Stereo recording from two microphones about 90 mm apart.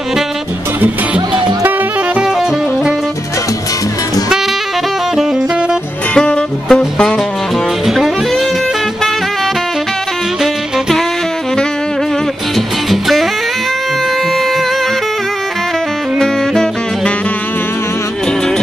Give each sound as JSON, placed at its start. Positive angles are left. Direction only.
{"t": 0.7, "sound": "music", "side_deg": -15}
{"t": 6.1, "sound": "music", "side_deg": 10}
{"t": 7.8, "sound": "saxophone", "side_deg": 0}
{"t": 10.4, "sound": "music", "side_deg": 0}
{"t": 12.5, "sound": "music", "side_deg": 0}
{"t": 16.2, "sound": "saxophone", "side_deg": 5}